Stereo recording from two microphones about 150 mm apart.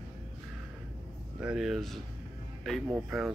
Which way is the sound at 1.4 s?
5° right (ahead or behind).